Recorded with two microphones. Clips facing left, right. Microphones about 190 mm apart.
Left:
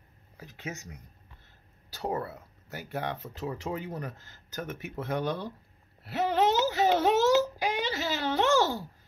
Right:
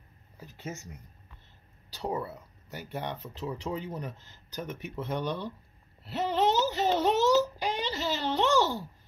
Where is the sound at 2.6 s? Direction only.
50° left (ahead or behind).